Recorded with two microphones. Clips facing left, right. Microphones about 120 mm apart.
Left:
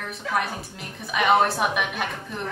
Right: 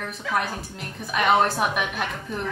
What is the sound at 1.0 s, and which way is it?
A woman's voice, centre (ahead or behind).